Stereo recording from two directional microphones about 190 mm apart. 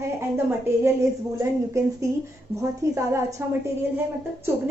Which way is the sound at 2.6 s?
15° right (ahead or behind).